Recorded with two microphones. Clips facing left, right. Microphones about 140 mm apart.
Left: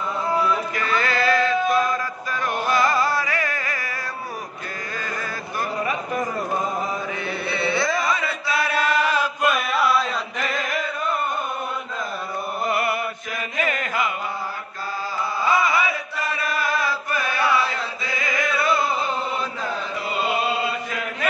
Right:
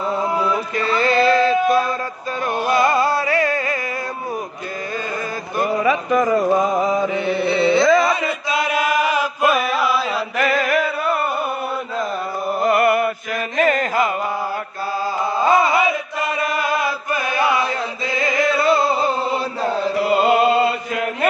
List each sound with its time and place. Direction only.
0.7 s music: 30° right (ahead or behind)
5.9 s a sound: 90° right
7.2 s chant: 20° right (ahead or behind); by 10.2 s 5° right (ahead or behind)
10.3 s a sound: 70° right (ahead or behind)
12.6 s mantra: 55° right (ahead or behind)
13.6 s mantra: 40° right (ahead or behind)
15.6 s chant: 25° right (ahead or behind)